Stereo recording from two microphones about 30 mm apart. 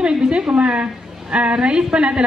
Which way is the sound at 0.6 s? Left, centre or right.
Right.